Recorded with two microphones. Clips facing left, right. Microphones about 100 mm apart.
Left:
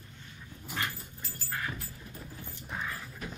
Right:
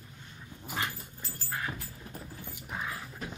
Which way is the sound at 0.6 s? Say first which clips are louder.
Right 1 dB; 20° right (ahead or behind).